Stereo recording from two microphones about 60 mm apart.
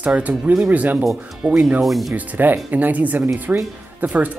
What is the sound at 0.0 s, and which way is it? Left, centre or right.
Speech, right.